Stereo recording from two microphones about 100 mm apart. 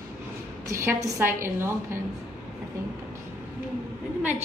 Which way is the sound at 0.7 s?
30° right (ahead or behind).